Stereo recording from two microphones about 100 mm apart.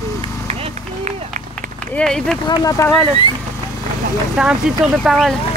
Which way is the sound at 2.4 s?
40° left (ahead or behind).